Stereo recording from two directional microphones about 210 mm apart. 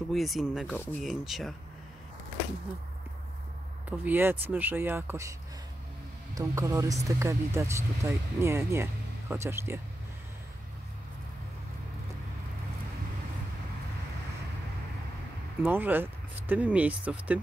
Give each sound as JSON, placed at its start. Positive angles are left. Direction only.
{"t": 0.1, "sound": "speech", "side_deg": 0}
{"t": 4.0, "sound": "speech", "side_deg": -10}
{"t": 6.3, "sound": "speech", "side_deg": -15}
{"t": 15.6, "sound": "speech", "side_deg": -10}